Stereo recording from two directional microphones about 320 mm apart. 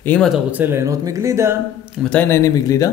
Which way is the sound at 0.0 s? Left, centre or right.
Centre.